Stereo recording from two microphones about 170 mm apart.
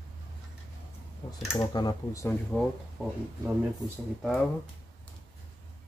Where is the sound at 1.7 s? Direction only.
25° left (ahead or behind).